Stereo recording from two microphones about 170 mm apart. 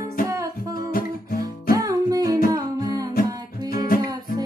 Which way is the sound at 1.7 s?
20° right (ahead or behind).